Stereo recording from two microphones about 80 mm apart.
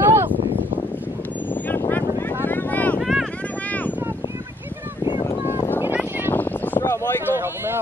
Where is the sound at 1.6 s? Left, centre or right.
Left.